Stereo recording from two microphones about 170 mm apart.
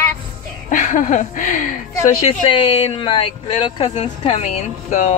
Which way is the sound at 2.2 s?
35° left (ahead or behind).